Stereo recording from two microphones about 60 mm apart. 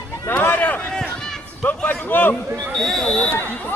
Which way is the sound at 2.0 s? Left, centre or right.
Left.